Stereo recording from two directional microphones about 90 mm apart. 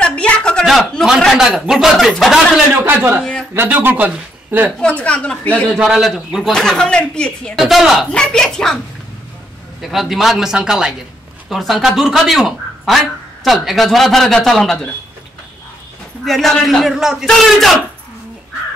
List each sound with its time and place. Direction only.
0.0 s a sound: 10° left (ahead or behind)
0.7 s speech: centre (ahead or behind)
2.8 s a woman's voice: 25° right (ahead or behind)
4.7 s a woman's voice: 15° left (ahead or behind)
5.7 s a woman's voice: 5° right (ahead or behind)
7.5 s speech: centre (ahead or behind)
8.1 s a woman's voice: 10° left (ahead or behind)
9.8 s speech: centre (ahead or behind)
16.3 s speech: centre (ahead or behind)